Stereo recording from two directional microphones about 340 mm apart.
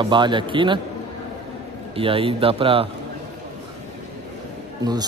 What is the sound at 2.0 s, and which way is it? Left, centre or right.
Speech, centre.